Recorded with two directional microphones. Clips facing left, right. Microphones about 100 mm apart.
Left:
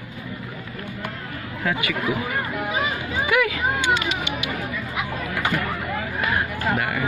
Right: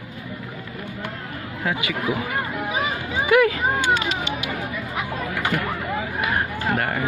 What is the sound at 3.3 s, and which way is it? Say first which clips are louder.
Speech: right 5 dB; 35° right (ahead or behind).